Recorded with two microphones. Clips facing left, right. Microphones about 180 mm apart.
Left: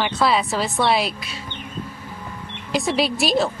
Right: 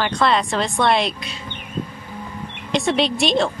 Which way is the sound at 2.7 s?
5° left (ahead or behind).